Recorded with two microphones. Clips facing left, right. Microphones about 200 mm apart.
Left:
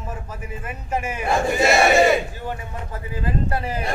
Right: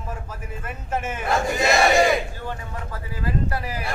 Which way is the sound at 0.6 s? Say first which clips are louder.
Left 1 dB; 10° left (ahead or behind).